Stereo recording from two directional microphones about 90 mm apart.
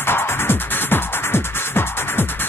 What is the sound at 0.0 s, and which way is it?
Music, 25° left (ahead or behind).